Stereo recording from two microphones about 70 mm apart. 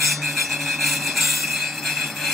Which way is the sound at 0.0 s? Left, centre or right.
Centre.